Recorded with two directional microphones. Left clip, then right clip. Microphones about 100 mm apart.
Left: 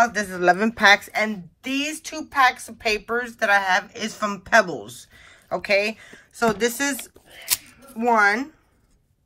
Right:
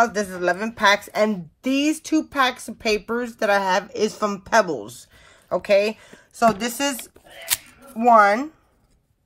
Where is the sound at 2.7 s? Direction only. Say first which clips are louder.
Even; 65° right (ahead or behind); by 4.3 s 40° right (ahead or behind).